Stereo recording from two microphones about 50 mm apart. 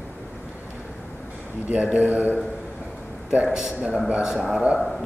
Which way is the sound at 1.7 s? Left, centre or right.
Right.